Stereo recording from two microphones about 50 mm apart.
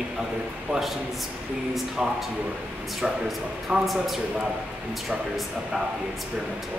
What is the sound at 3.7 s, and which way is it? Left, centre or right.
Speech, centre.